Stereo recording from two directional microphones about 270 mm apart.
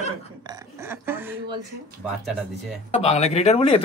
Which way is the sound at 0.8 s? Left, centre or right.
Centre.